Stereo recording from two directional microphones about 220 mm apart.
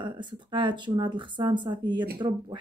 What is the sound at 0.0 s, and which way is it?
Speech, 20° right (ahead or behind).